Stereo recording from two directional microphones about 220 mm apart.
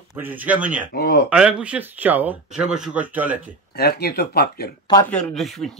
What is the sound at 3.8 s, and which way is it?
Speech, 45° left (ahead or behind).